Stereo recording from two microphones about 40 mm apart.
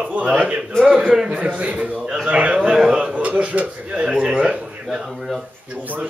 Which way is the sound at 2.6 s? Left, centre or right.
Centre.